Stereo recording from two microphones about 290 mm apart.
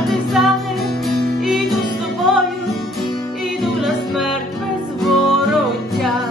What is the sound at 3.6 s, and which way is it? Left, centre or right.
Music, centre.